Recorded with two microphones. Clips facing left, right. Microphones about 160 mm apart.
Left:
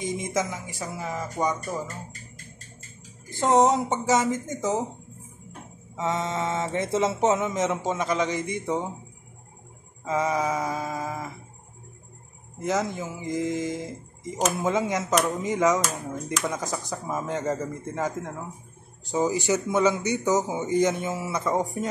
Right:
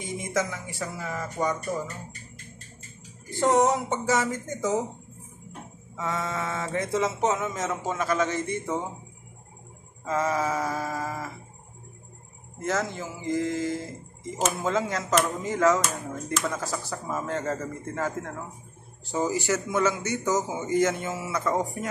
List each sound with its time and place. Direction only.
0.0 s speech: 20° left (ahead or behind)
3.3 s speech: 20° left (ahead or behind)
5.9 s speech: 20° left (ahead or behind)
10.0 s a man's voice: 15° left (ahead or behind)
12.9 s a man's voice: 20° left (ahead or behind)